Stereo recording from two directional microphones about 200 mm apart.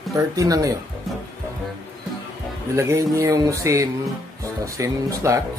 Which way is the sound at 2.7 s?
15° right (ahead or behind).